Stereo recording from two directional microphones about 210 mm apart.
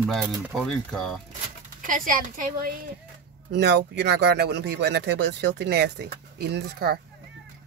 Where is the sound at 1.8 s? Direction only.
40° right (ahead or behind).